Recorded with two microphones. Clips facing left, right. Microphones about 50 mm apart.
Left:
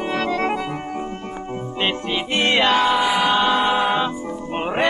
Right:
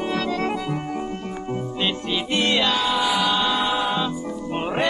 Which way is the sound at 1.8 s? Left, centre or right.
Left.